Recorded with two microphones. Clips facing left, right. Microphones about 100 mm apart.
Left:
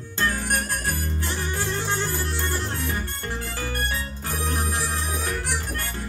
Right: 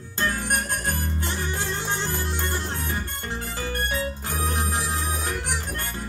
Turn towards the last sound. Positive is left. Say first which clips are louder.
# even
turn(degrees=-25)  # may be behind; listen again after turning